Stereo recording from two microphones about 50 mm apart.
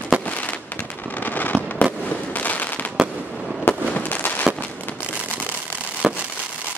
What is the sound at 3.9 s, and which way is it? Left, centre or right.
Fireworks, left.